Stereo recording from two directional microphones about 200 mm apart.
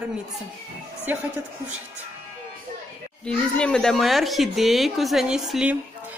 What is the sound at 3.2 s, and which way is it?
Speech, 5° left (ahead or behind).